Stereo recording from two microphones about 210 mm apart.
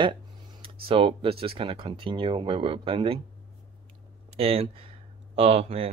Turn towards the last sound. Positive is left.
turn(degrees=-25)  # may be behind; listen again after turning